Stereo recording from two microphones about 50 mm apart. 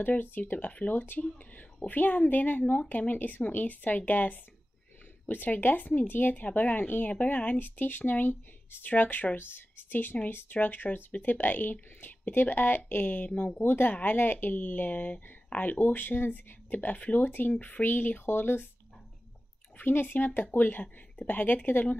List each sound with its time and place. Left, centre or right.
0.0 s speech: left
7.5 s a woman's voice: left
13.3 s speech: left
13.6 s speech: left
15.8 s speech: left
19.8 s speech: left